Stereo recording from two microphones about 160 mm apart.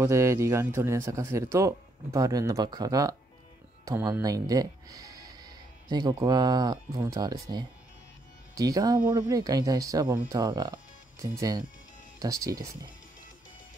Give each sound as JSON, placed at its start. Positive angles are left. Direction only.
{"t": 0.0, "sound": "speech", "side_deg": -15}